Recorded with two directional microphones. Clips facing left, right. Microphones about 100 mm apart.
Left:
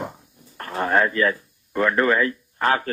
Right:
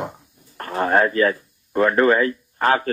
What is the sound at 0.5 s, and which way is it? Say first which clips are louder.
Speech: right 2 dB; 35° right (ahead or behind).